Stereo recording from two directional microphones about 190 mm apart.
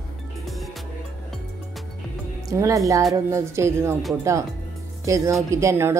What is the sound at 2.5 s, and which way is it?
Speech, 15° right (ahead or behind).